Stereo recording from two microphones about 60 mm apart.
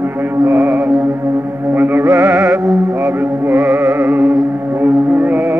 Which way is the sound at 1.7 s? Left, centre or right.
Right.